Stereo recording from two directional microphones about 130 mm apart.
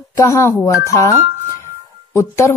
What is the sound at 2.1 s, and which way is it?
Speech, 20° left (ahead or behind).